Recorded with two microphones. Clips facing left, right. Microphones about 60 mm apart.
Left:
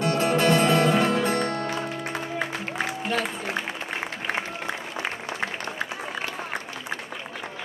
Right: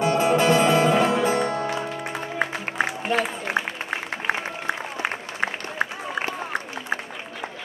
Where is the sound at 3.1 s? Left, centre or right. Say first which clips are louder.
Right 3 dB; centre.